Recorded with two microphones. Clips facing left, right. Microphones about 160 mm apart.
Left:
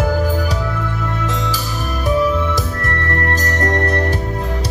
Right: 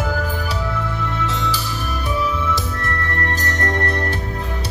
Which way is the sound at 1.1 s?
45° left (ahead or behind).